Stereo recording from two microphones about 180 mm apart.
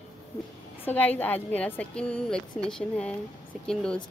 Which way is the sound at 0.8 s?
10° left (ahead or behind).